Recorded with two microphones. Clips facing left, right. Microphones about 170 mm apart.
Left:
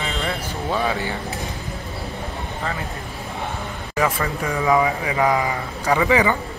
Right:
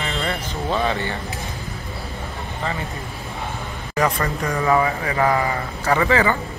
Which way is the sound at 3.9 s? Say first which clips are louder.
Right 1 dB; 5° left (ahead or behind).